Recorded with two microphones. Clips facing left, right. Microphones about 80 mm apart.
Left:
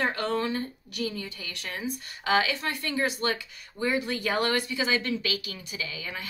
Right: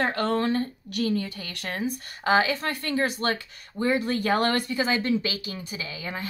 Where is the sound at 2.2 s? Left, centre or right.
Right.